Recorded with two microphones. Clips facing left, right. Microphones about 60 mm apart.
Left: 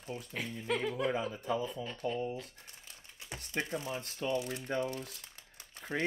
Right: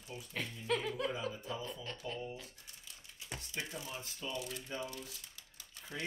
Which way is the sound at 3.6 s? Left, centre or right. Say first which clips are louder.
Left 8 dB; left.